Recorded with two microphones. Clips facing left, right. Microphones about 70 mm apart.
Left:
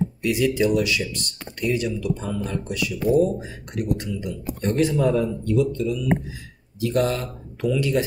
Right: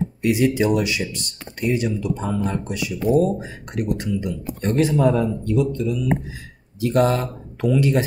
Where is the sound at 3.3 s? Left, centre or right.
Right; by 6.0 s centre.